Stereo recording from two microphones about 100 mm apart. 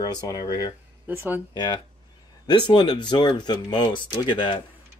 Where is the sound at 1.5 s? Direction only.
45° left (ahead or behind).